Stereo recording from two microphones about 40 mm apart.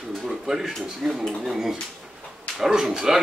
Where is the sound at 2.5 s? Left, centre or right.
Centre.